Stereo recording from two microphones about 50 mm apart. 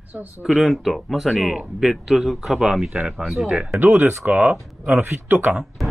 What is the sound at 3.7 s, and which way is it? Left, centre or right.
Speech, right.